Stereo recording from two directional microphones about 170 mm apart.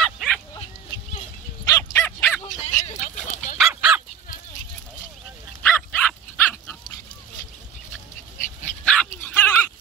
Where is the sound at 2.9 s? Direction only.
45° left (ahead or behind).